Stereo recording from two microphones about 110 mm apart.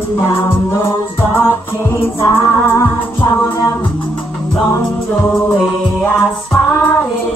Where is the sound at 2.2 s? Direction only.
25° left (ahead or behind).